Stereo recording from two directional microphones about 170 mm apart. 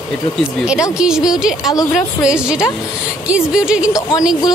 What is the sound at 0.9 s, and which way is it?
Speech, 5° right (ahead or behind).